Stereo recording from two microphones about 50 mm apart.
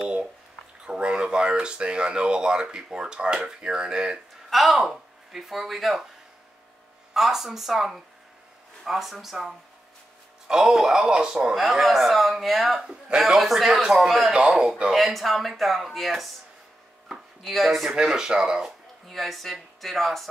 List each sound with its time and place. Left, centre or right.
0.8 s speech: right
4.5 s speech: centre
7.2 s speech: centre
11.5 s speech: centre
17.9 s speech: centre
19.0 s speech: centre